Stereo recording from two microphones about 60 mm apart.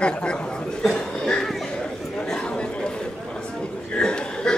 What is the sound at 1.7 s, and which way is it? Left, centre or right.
Chatter, centre.